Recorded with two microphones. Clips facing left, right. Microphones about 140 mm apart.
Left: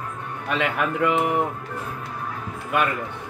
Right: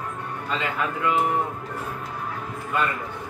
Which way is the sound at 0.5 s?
70° left (ahead or behind).